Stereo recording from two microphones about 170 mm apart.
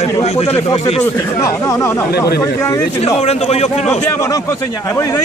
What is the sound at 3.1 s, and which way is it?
Speech, 40° left (ahead or behind).